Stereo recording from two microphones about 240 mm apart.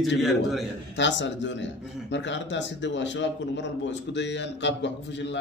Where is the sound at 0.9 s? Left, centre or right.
Left.